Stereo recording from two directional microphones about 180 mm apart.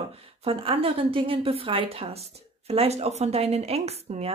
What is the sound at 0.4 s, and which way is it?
Speech, 30° right (ahead or behind).